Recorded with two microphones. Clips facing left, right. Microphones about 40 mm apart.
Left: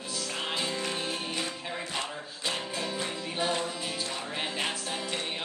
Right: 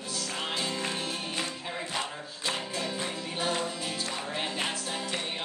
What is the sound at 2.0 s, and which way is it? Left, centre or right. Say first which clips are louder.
Music: even; centre.